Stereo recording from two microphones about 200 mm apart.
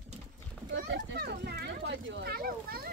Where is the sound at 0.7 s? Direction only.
60° right (ahead or behind).